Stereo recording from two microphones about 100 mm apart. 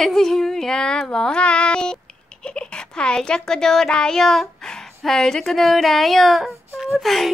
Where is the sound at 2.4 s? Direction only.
10° left (ahead or behind).